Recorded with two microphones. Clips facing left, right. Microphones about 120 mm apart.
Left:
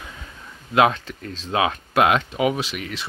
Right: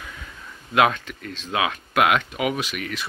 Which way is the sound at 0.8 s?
30° left (ahead or behind).